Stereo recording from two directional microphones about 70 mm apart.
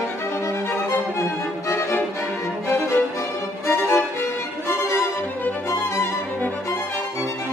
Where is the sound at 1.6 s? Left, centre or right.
Left.